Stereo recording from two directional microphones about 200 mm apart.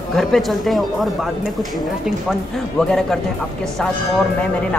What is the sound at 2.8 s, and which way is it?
Speech, 5° left (ahead or behind).